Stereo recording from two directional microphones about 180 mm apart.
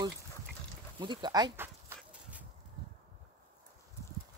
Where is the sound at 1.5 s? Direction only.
10° right (ahead or behind).